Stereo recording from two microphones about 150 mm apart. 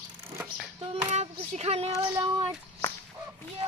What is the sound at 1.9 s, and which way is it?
Child singing, 20° right (ahead or behind).